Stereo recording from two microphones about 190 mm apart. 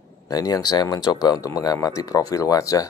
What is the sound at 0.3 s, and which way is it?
Speech, 20° left (ahead or behind).